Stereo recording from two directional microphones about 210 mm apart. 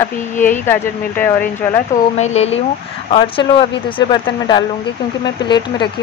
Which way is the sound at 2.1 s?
30° left (ahead or behind).